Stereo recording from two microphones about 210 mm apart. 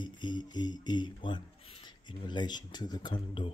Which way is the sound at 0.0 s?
20° left (ahead or behind).